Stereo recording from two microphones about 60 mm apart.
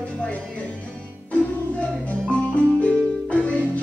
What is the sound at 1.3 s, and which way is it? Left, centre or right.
Music, centre.